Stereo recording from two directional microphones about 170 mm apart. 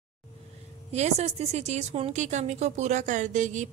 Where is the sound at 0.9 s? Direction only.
40° right (ahead or behind).